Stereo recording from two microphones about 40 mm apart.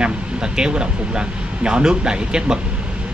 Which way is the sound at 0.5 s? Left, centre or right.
Right.